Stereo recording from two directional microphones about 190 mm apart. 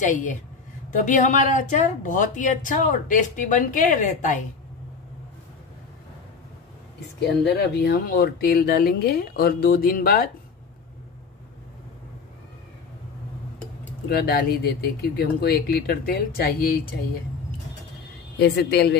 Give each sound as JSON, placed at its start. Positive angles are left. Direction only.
{"t": 0.0, "sound": "a woman's voice", "side_deg": 40}
{"t": 7.4, "sound": "a woman's voice", "side_deg": 60}
{"t": 14.0, "sound": "a woman's voice", "side_deg": 55}
{"t": 18.4, "sound": "speech", "side_deg": 60}